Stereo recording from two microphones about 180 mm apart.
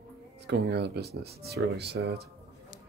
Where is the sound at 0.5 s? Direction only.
65° right (ahead or behind).